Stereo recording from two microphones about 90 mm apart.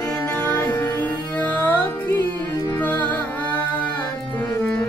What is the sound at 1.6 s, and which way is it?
Music, 20° left (ahead or behind).